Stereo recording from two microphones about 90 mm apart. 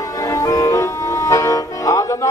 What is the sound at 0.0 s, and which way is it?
Music, 35° left (ahead or behind).